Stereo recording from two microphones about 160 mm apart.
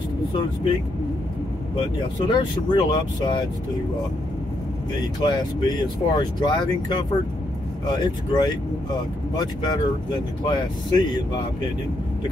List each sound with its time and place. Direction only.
2.2 s speech: 25° left (ahead or behind)
5.2 s speech: 30° left (ahead or behind)